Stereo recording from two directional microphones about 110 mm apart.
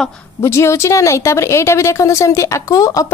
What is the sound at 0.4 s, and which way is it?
A woman's voice, 25° left (ahead or behind).